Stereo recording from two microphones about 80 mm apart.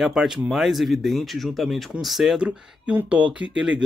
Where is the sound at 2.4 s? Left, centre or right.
Centre.